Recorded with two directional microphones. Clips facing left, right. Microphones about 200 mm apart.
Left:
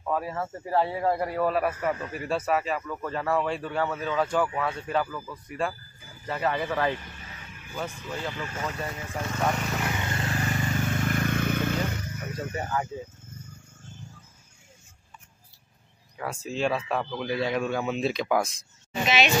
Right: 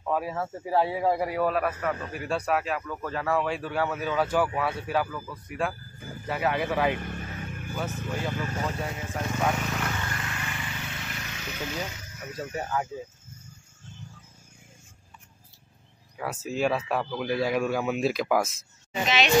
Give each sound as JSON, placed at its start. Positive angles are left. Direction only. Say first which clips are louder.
{"t": 0.0, "sound": "speech", "louder": "right 1 dB", "side_deg": -5}
{"t": 7.0, "sound": "music", "louder": "right 10 dB", "side_deg": -55}
{"t": 8.4, "sound": "speech", "louder": "right 3 dB", "side_deg": -40}
{"t": 8.8, "sound": "speech", "louder": "right 1 dB", "side_deg": -5}
{"t": 9.8, "sound": "vehicle", "louder": "left 2 dB", "side_deg": 15}
{"t": 10.1, "sound": "vehicle", "louder": "left 7 dB", "side_deg": 35}
{"t": 12.4, "sound": "speech", "louder": "even", "side_deg": 0}
{"t": 16.2, "sound": "speech", "louder": "right 1 dB", "side_deg": -5}